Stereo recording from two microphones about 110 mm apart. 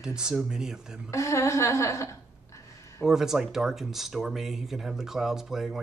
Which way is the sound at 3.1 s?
5° right (ahead or behind).